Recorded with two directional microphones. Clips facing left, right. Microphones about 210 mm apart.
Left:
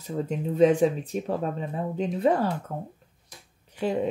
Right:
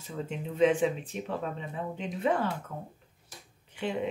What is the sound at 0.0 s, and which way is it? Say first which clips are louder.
Speech: left 7 dB; 40° left (ahead or behind).